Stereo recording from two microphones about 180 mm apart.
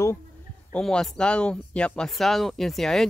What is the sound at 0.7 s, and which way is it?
Speech, 5° left (ahead or behind).